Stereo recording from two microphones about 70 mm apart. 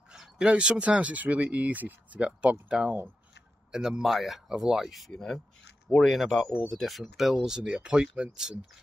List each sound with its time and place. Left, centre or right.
0.1 s speech: centre
7.4 s speech: centre